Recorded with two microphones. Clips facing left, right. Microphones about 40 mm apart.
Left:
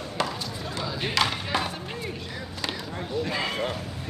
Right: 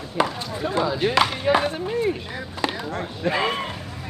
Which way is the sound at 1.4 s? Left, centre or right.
Right.